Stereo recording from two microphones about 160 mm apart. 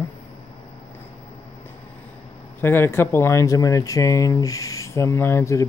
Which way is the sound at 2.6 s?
15° left (ahead or behind).